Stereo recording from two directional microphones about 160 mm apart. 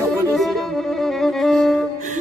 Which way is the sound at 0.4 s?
Centre (ahead or behind).